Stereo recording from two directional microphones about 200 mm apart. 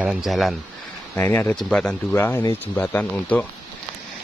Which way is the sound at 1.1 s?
10° left (ahead or behind).